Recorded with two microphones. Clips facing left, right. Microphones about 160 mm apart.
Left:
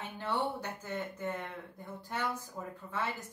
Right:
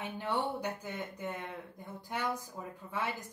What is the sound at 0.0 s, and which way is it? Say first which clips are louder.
Speech: even; 15° right (ahead or behind).